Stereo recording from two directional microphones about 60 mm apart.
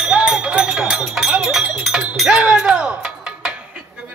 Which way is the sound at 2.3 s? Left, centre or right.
Centre.